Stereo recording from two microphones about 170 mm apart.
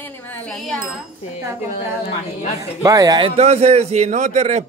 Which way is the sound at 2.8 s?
20° right (ahead or behind).